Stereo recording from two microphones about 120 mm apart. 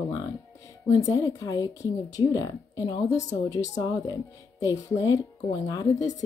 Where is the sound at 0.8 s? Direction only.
25° left (ahead or behind).